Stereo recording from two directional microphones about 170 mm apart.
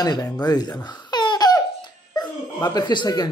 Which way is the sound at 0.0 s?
25° left (ahead or behind).